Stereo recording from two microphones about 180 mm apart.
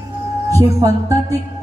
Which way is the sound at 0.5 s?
20° right (ahead or behind).